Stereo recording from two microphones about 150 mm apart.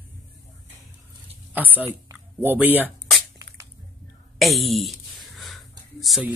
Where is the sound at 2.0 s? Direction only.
15° right (ahead or behind).